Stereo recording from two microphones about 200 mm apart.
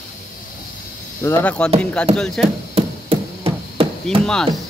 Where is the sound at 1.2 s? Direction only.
10° left (ahead or behind).